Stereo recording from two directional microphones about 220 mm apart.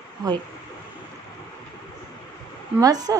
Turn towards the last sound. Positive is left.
turn(degrees=-15)  # may be behind; listen again after turning